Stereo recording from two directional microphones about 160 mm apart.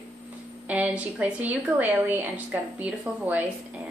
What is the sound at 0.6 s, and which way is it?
A woman's voice, 10° right (ahead or behind).